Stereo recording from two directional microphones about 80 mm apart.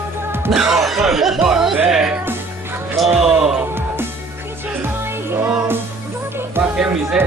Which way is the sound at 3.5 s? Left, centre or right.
Right.